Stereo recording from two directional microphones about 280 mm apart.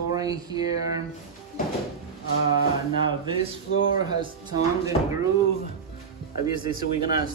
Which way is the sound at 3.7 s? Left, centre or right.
Left.